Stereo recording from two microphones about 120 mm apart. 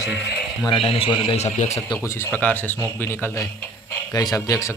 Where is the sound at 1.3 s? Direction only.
65° left (ahead or behind).